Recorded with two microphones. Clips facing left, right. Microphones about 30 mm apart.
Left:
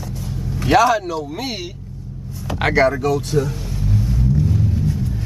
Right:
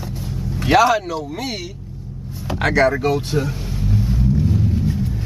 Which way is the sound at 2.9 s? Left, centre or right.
Right.